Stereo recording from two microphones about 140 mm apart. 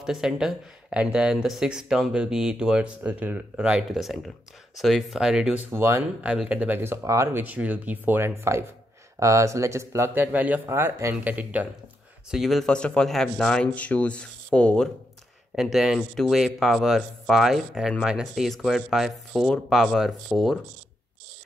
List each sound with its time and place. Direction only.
0.0 s speech: 5° right (ahead or behind)
12.3 s speech: centre (ahead or behind)